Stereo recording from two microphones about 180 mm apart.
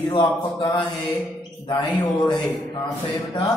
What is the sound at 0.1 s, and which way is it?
Speech, 25° left (ahead or behind).